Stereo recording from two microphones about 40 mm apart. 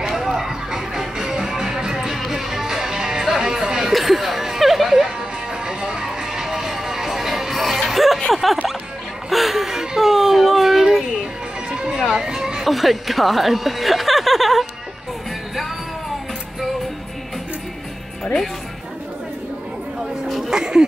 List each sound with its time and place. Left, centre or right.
0.1 s music: centre
3.9 s music: centre
9.3 s whimper: centre
11.7 s music: centre
12.1 s a sound: centre
18.2 s music: centre
20.0 s chatter: centre
20.5 s a sound: centre